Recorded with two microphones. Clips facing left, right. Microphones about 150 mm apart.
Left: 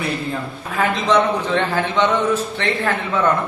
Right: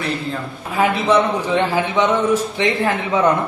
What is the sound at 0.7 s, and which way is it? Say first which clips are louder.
A man's voice: right 2 dB; 10° right (ahead or behind).